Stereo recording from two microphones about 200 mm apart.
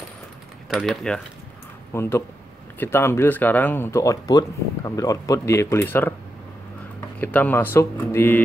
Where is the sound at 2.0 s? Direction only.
15° left (ahead or behind).